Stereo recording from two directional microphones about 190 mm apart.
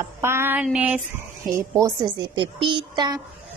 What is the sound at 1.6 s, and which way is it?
A woman's voice, 15° right (ahead or behind).